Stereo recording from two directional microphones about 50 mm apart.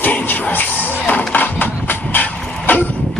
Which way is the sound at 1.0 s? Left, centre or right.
Left.